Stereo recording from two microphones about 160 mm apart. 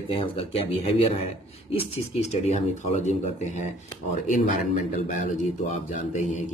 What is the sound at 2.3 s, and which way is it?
Speech, 45° left (ahead or behind).